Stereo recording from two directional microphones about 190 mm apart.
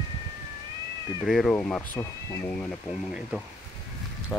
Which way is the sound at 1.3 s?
Centre (ahead or behind).